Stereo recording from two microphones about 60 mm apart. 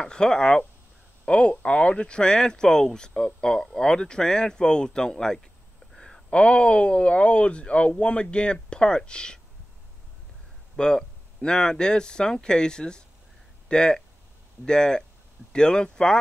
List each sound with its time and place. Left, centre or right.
0.0 s speech: centre
10.8 s speech: centre